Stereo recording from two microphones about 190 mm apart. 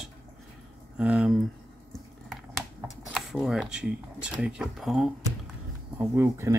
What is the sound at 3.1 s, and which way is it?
Speech, centre (ahead or behind).